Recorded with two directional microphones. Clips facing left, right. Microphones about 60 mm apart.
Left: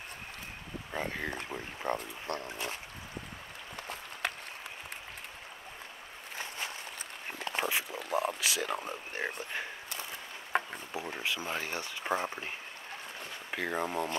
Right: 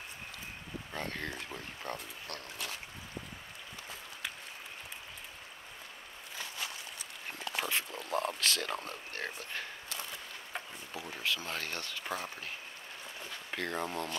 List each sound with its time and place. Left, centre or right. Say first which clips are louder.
0.9 s speech: left 4 dB; centre; by 2.8 s left
3.8 s applause: left 7 dB; left
7.4 s a sound: left 3 dB; left
8.1 s speech: left 2 dB; centre
10.5 s a sound: left 12 dB; left
10.9 s speech: even; left
13.5 s speech: left 3 dB; centre